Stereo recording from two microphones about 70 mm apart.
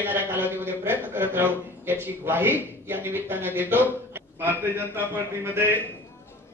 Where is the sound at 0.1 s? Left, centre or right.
Right.